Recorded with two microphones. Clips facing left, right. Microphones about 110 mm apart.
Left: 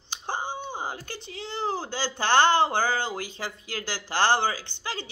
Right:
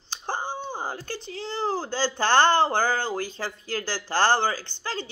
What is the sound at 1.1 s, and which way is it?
A woman's voice, 20° left (ahead or behind).